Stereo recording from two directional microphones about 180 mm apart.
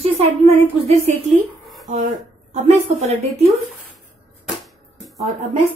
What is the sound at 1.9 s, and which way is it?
Speech, 40° right (ahead or behind).